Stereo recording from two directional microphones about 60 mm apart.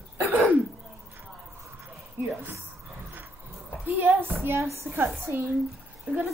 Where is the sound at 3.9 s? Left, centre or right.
Right.